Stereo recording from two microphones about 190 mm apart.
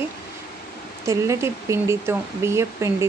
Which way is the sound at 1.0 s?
15° right (ahead or behind).